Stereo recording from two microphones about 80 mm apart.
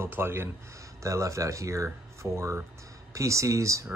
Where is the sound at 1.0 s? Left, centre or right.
Right.